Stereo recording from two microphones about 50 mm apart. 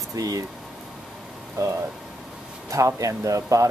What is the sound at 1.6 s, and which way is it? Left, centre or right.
Speech, right.